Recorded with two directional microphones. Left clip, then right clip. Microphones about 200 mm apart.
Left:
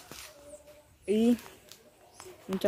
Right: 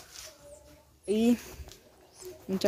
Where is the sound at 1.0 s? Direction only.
5° right (ahead or behind).